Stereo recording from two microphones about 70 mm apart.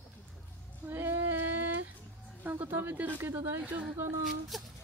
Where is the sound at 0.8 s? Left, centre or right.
Right.